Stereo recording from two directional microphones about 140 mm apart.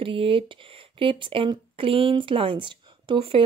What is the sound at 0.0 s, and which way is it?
Speech, 40° right (ahead or behind).